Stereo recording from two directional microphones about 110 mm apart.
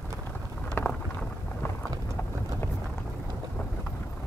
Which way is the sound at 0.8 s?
20° left (ahead or behind).